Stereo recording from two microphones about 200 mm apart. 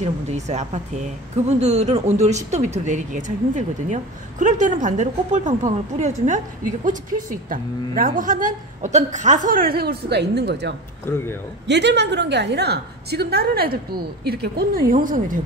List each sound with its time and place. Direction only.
0.0 s a woman's voice: 35° right (ahead or behind)